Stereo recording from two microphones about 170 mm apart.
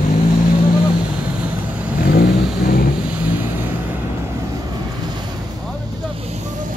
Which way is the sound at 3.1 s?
10° right (ahead or behind).